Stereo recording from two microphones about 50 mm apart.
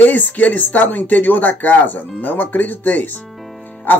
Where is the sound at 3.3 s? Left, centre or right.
Centre.